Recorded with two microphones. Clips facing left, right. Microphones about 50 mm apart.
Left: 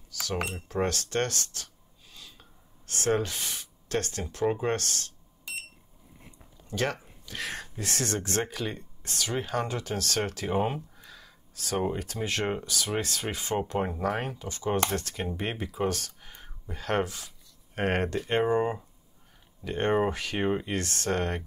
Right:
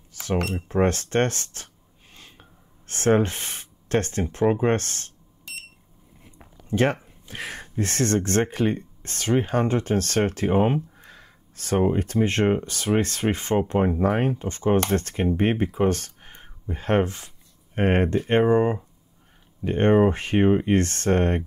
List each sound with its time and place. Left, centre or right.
0.1 s cutlery: right
0.6 s speech: right
6.7 s speech: right
13.6 s speech: right